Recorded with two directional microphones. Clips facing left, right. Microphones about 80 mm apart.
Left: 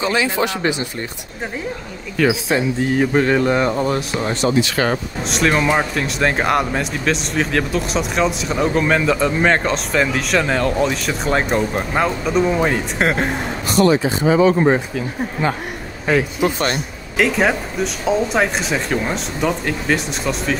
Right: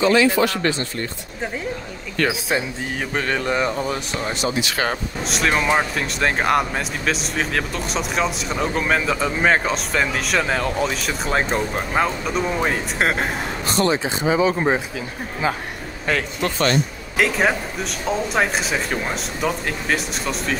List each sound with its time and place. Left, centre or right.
0.0 s speech: centre
2.1 s speech: centre
13.8 s speech: left
14.2 s speech: centre
16.1 s speech: centre
16.7 s speech: centre